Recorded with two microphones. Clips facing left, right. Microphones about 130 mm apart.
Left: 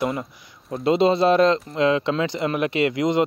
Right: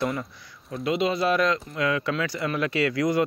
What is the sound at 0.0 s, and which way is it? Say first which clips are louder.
Speech: left 3 dB; 30° left (ahead or behind).